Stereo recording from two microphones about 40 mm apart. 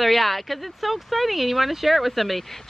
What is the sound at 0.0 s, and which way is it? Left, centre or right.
Speech, centre.